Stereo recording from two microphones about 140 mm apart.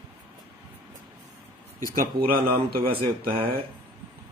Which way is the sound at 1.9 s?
90° right.